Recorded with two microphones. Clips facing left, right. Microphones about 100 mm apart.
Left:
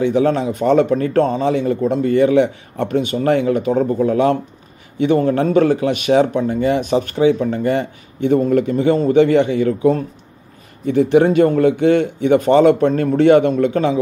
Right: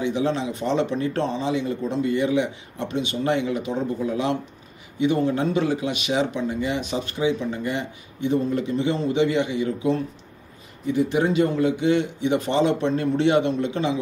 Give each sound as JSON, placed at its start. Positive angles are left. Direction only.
{"t": 0.0, "sound": "speech", "side_deg": 50}